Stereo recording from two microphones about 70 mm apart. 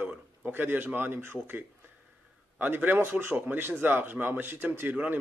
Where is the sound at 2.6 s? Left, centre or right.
Right.